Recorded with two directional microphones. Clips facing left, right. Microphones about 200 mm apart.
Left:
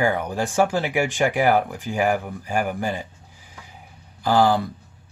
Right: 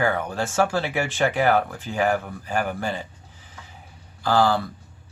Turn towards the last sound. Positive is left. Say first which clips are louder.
# left 2 dB
turn(degrees=15)  # may be behind; listen again after turning